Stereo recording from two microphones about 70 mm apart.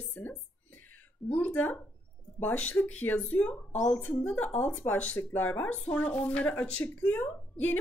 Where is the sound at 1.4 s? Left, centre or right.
Left.